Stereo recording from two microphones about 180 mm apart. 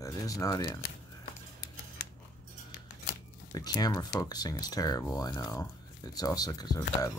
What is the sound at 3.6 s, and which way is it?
Speech, 20° left (ahead or behind).